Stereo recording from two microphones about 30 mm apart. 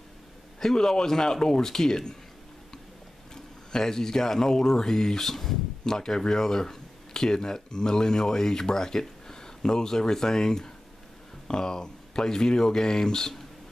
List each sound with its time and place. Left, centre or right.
0.6 s speech: centre
3.7 s speech: centre
5.9 s speech: left